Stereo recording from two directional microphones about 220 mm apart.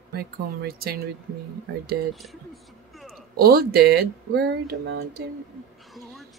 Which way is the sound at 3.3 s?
45° right (ahead or behind).